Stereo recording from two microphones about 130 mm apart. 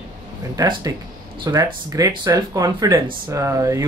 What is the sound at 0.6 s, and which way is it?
Speech, 30° right (ahead or behind).